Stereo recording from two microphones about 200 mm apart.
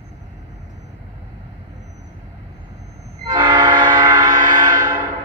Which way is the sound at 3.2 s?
20° right (ahead or behind).